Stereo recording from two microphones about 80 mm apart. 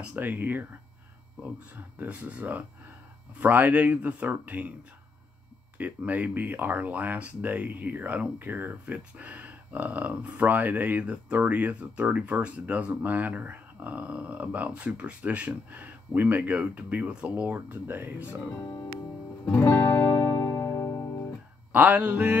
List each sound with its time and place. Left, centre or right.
0.0 s speech: right
2.0 s speech: centre
5.8 s speech: centre
19.5 s music: left
21.7 s mantra: centre